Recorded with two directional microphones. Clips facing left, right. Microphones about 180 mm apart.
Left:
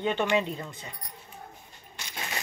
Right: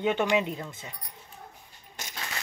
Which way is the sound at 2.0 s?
45° right (ahead or behind).